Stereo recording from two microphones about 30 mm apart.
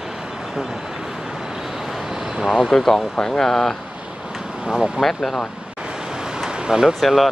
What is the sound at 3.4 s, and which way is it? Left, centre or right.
Speech, centre.